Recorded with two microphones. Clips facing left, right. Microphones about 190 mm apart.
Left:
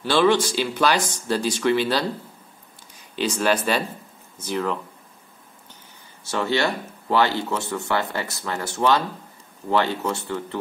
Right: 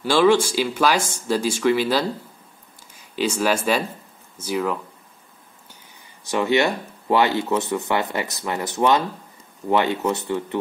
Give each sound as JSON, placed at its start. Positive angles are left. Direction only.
{"t": 0.0, "sound": "speech", "side_deg": -10}
{"t": 3.2, "sound": "speech", "side_deg": -10}
{"t": 6.2, "sound": "speech", "side_deg": -15}